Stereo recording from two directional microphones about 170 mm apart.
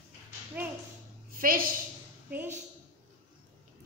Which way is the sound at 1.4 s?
60° right (ahead or behind).